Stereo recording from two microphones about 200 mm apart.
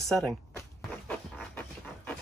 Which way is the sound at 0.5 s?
5° left (ahead or behind).